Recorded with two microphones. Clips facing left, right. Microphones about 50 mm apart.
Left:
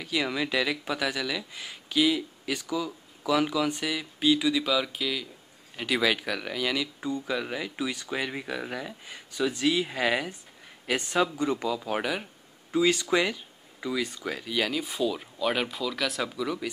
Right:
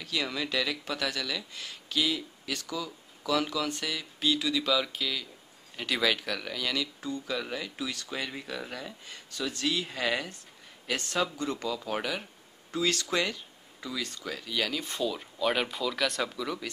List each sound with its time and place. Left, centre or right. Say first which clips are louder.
0.0 s speech: left 4 dB; centre